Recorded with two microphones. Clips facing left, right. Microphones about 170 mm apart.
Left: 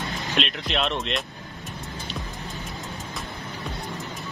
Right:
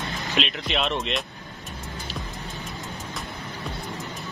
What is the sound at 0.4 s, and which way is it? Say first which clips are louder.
Speech: even; centre (ahead or behind).